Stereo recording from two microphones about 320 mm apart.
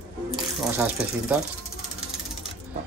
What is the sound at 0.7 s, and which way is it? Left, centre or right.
Speech, centre.